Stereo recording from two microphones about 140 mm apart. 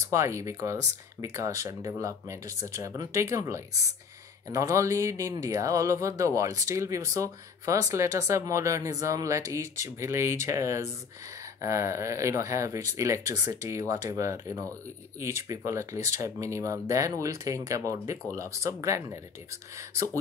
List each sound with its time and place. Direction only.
0.1 s speech: 20° right (ahead or behind)